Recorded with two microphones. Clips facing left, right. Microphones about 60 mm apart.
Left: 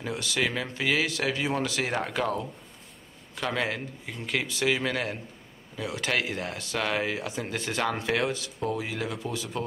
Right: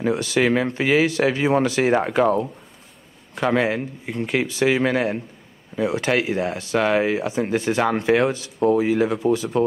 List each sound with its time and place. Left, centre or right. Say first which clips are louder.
0.0 s speech: right 9 dB; right